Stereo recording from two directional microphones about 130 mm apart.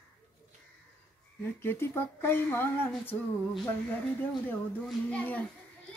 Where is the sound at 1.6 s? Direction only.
15° left (ahead or behind).